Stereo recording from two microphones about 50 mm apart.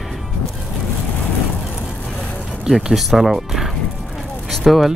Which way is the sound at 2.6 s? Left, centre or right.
Centre.